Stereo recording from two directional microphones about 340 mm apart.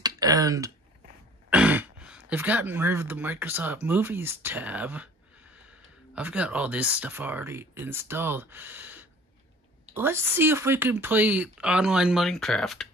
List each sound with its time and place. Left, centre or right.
0.0 s speech: centre
6.1 s speech: centre